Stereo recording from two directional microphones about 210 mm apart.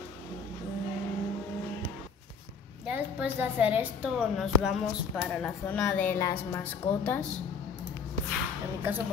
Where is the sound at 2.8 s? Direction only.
5° right (ahead or behind); by 7.2 s 10° left (ahead or behind).